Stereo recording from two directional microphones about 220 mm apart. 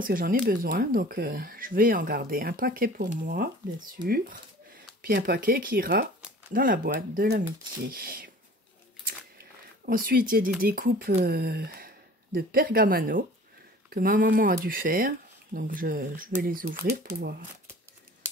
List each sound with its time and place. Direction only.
0.0 s speech: 40° right (ahead or behind)
9.0 s a sound: 40° right (ahead or behind)
10.6 s speech: 40° right (ahead or behind)